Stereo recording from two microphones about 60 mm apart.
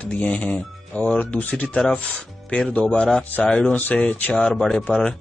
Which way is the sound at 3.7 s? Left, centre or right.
Left.